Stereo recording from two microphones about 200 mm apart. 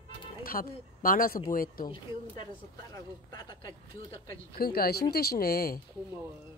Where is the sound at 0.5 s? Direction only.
45° left (ahead or behind).